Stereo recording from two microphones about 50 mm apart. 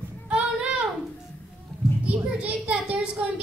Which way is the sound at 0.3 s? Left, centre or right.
Right.